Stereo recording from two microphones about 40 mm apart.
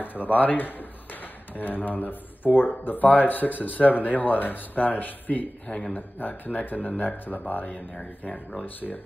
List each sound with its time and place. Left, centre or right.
0.3 s speech: left